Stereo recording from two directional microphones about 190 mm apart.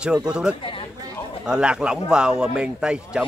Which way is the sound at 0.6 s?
25° left (ahead or behind).